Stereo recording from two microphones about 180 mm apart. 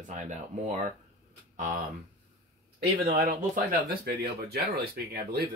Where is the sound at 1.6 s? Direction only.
45° right (ahead or behind).